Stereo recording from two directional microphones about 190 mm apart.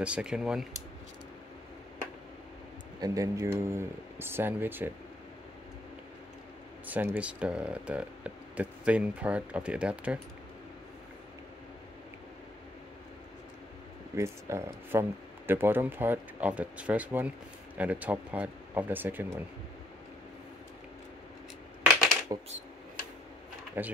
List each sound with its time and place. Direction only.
0.0 s speech: 5° right (ahead or behind)
3.0 s speech: 20° right (ahead or behind)
6.9 s speech: 10° right (ahead or behind)
14.1 s speech: 15° right (ahead or behind)
22.3 s speech: 20° right (ahead or behind)
23.8 s speech: 10° right (ahead or behind)